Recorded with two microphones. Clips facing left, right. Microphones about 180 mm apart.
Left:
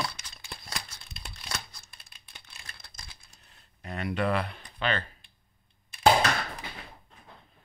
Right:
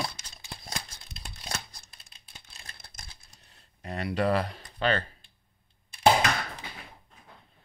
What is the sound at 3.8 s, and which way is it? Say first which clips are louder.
Speech: right 2 dB; 35° right (ahead or behind).